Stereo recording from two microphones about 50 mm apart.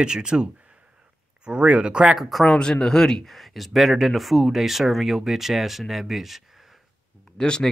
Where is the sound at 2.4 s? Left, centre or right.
Centre.